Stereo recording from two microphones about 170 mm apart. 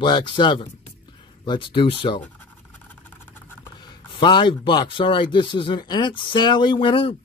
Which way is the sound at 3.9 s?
25° left (ahead or behind).